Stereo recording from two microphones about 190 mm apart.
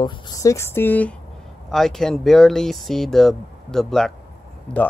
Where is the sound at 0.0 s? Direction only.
20° left (ahead or behind).